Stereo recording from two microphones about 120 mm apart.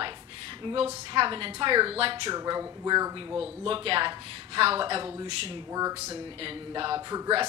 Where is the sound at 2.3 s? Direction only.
35° right (ahead or behind).